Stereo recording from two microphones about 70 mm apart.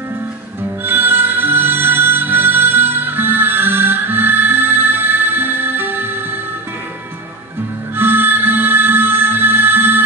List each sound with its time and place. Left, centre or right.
0.8 s music: right
7.9 s music: right